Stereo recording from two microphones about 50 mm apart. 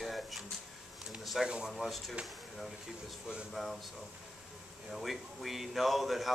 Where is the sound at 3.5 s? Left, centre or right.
Centre.